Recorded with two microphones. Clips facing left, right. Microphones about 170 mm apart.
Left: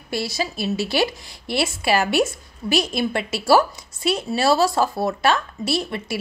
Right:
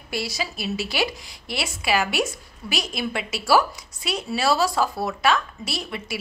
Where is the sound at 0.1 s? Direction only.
25° left (ahead or behind).